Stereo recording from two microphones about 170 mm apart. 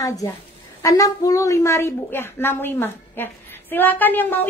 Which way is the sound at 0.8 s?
20° left (ahead or behind).